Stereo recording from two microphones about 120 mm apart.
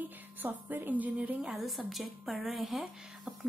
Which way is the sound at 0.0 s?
15° right (ahead or behind).